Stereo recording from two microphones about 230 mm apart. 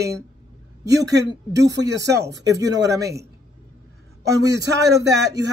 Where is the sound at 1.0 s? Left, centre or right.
Right.